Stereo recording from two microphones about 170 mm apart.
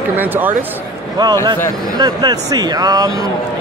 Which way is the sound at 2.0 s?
25° right (ahead or behind).